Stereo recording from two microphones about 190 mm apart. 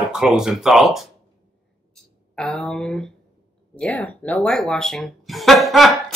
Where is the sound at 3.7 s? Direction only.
5° left (ahead or behind).